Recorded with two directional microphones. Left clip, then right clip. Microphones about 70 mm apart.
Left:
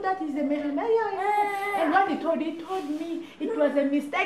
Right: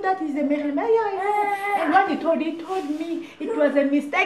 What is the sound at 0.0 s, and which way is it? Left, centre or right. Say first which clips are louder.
A woman's voice: right 4 dB; centre.